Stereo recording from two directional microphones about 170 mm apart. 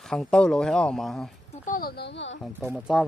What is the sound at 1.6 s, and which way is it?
Speech, 60° left (ahead or behind).